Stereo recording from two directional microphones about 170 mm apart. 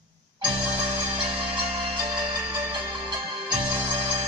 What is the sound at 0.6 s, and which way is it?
Music, 10° right (ahead or behind).